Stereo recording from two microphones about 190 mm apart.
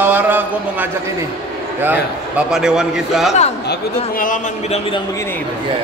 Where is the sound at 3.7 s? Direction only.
45° left (ahead or behind).